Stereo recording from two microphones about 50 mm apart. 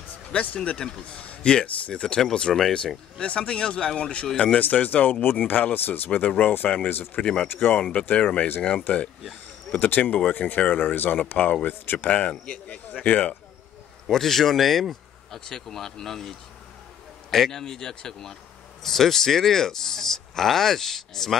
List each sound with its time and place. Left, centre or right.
0.3 s speech: left
1.2 s a sound: left
1.5 s speech: centre; by 7.1 s left
7.2 s speech: left
9.8 s speech: left
12.1 s speech: left
14.0 s speech: centre